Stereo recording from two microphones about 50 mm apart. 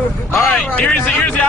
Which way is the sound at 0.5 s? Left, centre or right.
Left.